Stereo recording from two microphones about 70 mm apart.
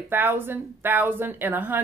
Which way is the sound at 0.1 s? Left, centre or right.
Right.